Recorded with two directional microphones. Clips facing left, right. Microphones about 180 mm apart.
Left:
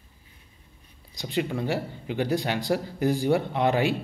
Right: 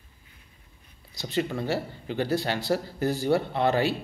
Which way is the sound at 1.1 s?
15° left (ahead or behind).